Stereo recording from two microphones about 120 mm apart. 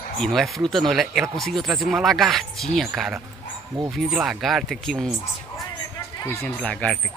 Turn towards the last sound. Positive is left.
turn(degrees=10)  # may be behind; listen again after turning